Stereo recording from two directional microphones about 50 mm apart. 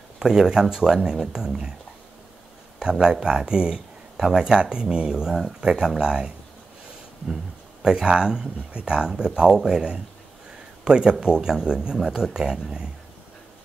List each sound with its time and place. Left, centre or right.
0.2 s speech: centre
2.8 s speech: centre
7.8 s speech: centre